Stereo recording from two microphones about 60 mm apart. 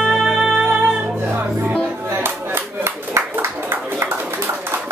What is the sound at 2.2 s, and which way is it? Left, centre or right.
Clapping, right.